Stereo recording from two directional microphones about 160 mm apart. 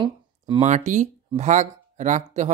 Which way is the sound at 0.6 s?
50° right (ahead or behind).